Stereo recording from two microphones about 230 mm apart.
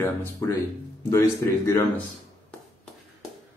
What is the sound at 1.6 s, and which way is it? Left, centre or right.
Speech, centre.